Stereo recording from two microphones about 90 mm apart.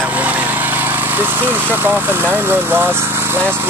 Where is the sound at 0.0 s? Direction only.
15° right (ahead or behind).